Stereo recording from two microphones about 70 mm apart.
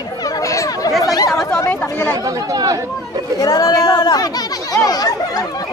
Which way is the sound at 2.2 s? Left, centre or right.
Right.